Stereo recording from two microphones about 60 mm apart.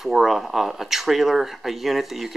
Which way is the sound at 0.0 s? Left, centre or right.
Centre.